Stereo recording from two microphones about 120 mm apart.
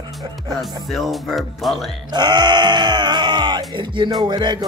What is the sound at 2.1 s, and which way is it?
Sheep, 35° right (ahead or behind).